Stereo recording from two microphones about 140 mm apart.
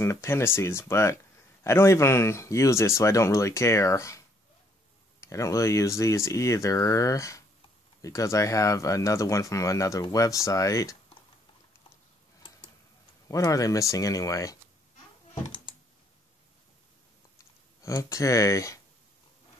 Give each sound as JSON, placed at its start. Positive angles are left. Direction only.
{"t": 0.0, "sound": "speech", "side_deg": 20}
{"t": 5.2, "sound": "speech", "side_deg": 20}
{"t": 13.3, "sound": "speech", "side_deg": 25}
{"t": 17.8, "sound": "speech", "side_deg": 25}